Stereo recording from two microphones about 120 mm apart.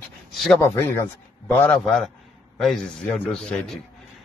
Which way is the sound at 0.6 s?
20° left (ahead or behind).